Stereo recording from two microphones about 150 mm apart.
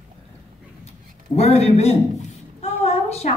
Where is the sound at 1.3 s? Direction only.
45° left (ahead or behind).